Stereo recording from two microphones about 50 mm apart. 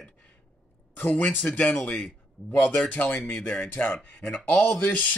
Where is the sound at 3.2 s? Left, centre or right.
Centre.